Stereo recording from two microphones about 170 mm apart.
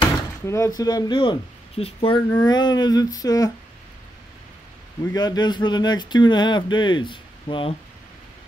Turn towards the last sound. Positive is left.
turn(degrees=30)  # may be behind; listen again after turning